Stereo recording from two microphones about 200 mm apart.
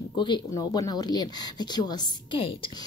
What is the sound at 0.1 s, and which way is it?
Speech, 20° left (ahead or behind).